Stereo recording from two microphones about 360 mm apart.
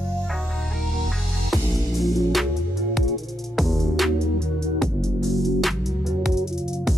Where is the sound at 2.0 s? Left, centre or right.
Centre.